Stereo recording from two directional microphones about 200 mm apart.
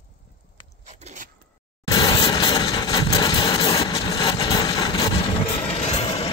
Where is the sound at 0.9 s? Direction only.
35° right (ahead or behind).